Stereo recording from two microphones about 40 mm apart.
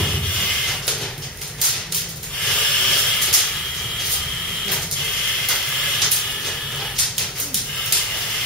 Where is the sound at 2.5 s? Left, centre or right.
Left.